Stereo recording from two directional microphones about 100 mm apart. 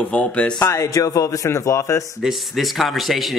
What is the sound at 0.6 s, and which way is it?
Speech, 35° left (ahead or behind).